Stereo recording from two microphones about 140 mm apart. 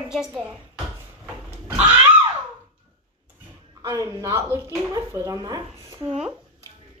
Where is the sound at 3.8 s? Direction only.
25° right (ahead or behind).